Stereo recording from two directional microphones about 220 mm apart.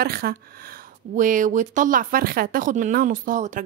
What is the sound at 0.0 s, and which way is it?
Speech, 45° right (ahead or behind).